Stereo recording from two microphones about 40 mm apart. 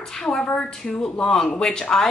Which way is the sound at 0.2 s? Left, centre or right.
Centre.